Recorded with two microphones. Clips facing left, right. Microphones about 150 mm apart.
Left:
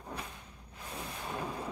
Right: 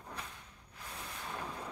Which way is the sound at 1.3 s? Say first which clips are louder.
Left 4 dB; 10° left (ahead or behind).